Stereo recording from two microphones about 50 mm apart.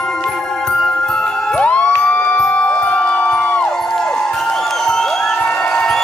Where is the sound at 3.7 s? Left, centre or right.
Centre.